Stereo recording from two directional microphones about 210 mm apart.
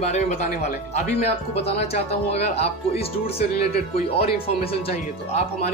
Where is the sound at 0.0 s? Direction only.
30° left (ahead or behind).